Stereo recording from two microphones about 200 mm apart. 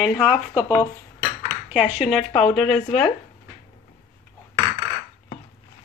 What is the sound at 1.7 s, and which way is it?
Speech, centre (ahead or behind).